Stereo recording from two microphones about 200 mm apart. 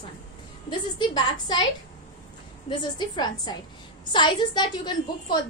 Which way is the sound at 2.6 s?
20° left (ahead or behind).